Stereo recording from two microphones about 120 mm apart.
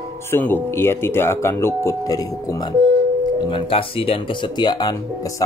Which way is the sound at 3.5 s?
50° left (ahead or behind).